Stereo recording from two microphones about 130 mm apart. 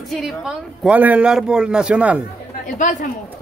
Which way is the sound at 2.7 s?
75° left (ahead or behind).